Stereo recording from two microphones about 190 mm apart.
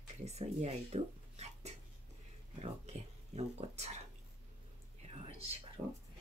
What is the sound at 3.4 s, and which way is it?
Speech, 35° right (ahead or behind).